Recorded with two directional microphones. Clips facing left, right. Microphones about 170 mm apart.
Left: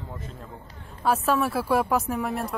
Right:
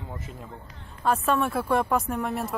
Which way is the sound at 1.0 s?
5° left (ahead or behind).